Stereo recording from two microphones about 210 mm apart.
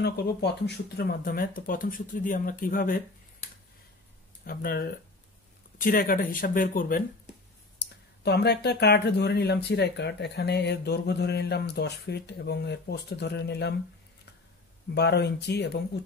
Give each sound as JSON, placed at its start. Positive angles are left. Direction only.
{"t": 0.0, "sound": "speech", "side_deg": 50}
{"t": 4.5, "sound": "speech", "side_deg": 45}
{"t": 8.2, "sound": "speech", "side_deg": 50}
{"t": 15.0, "sound": "speech", "side_deg": 55}